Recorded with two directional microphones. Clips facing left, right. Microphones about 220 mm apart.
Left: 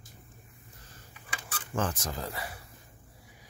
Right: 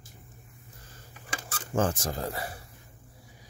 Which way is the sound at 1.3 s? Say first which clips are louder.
Right 4 dB; 45° right (ahead or behind).